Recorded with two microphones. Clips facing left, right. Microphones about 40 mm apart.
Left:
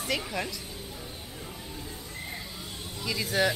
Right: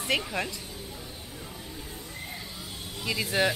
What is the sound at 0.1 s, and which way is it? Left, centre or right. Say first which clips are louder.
Speech: right 5 dB; right.